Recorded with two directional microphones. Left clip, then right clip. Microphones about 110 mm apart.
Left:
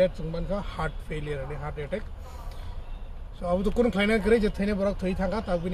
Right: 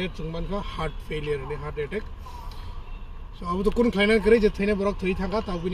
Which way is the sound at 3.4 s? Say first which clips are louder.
Right 1 dB; 40° left (ahead or behind).